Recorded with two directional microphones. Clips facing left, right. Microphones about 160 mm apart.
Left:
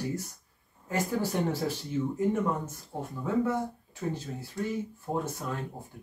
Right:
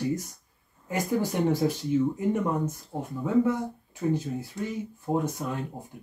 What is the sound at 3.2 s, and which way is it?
Speech, 15° right (ahead or behind).